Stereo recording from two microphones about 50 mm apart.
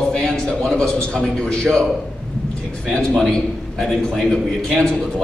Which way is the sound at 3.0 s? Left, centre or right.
Centre.